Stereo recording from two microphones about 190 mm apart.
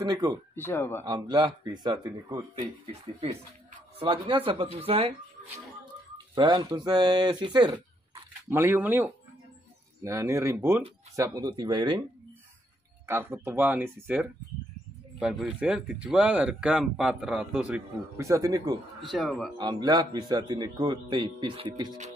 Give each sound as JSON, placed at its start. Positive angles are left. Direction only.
{"t": 0.0, "sound": "speech", "side_deg": -20}
{"t": 0.6, "sound": "speech", "side_deg": 10}
{"t": 1.0, "sound": "speech", "side_deg": -20}
{"t": 6.1, "sound": "speech", "side_deg": -25}
{"t": 8.5, "sound": "speech", "side_deg": -10}
{"t": 13.0, "sound": "speech", "side_deg": -10}
{"t": 15.1, "sound": "speech", "side_deg": -5}
{"t": 18.9, "sound": "speech", "side_deg": 0}
{"t": 19.6, "sound": "speech", "side_deg": -20}